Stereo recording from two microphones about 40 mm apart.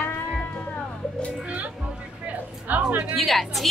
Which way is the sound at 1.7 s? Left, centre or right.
Centre.